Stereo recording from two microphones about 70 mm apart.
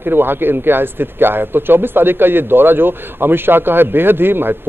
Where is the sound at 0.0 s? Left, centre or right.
Right.